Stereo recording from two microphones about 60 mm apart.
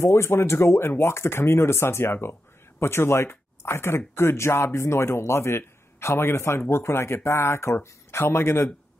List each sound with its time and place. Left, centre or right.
0.0 s speech: left